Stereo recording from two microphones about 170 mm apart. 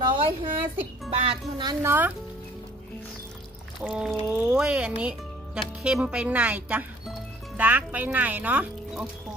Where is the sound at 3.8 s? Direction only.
Centre (ahead or behind).